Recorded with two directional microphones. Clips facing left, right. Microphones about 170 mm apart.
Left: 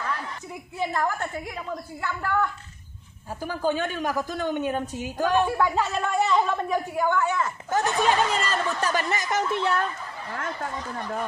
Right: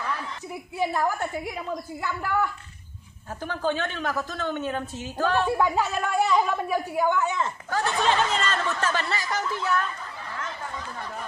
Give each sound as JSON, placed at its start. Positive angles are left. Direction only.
{"t": 0.7, "sound": "a woman's voice", "side_deg": -10}
{"t": 3.4, "sound": "a woman's voice", "side_deg": 10}
{"t": 5.6, "sound": "a woman's voice", "side_deg": -10}
{"t": 7.7, "sound": "a woman's voice", "side_deg": 15}
{"t": 10.3, "sound": "speech", "side_deg": 50}